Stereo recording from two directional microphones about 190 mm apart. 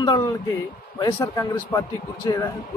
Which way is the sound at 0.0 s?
20° left (ahead or behind).